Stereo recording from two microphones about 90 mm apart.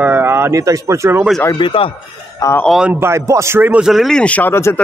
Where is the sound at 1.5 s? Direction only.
80° left.